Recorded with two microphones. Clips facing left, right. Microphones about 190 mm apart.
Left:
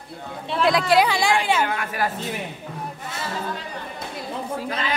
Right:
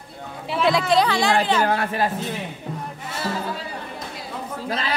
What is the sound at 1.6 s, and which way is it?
Speech, 35° right (ahead or behind).